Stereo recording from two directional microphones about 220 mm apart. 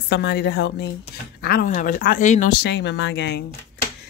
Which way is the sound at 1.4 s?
40° left (ahead or behind).